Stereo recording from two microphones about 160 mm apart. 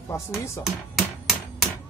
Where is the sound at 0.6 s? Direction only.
Centre (ahead or behind).